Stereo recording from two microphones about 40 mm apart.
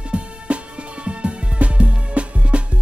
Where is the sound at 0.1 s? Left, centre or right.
Right.